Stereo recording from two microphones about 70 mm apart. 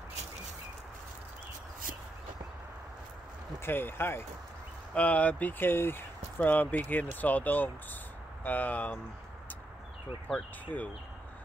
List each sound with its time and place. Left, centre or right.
3.5 s speech: left
4.9 s speech: left
10.2 s speech: left